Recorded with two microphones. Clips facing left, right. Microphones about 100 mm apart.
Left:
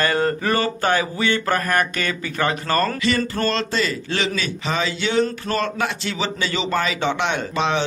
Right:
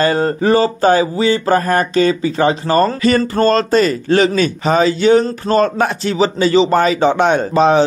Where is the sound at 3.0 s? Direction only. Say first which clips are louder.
Right 8 dB; 35° right (ahead or behind).